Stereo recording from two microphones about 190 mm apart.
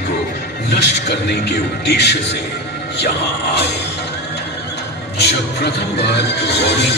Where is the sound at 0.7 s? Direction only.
60° left (ahead or behind).